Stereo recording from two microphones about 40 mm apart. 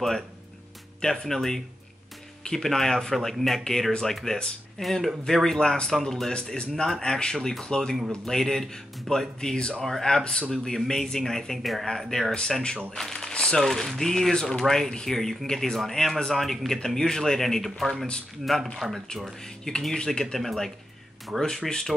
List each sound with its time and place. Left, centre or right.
1.0 s speech: centre
10.5 s speech: centre
12.4 s speech: centre
13.3 s a sound: left
13.6 s speech: centre
19.4 s speech: centre